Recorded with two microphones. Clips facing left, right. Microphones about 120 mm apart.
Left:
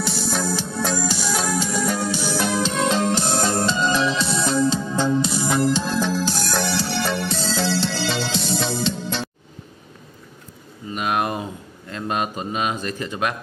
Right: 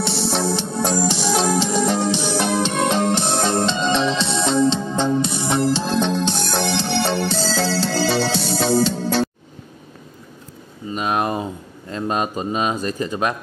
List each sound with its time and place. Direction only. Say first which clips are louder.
0.4 s music: right 3 dB; 25° right (ahead or behind); by 9.3 s 40° right (ahead or behind)
10.9 s a sound: right 2 dB; 30° right (ahead or behind)
11.9 s speech: right 3 dB; 30° right (ahead or behind)